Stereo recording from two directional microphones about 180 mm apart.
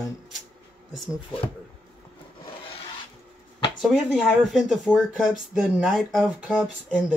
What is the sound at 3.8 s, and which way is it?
Speech, centre (ahead or behind).